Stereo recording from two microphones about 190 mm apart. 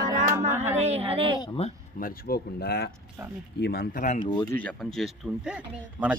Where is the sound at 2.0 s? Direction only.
55° left (ahead or behind).